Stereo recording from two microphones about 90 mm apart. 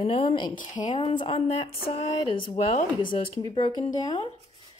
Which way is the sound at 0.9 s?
80° left.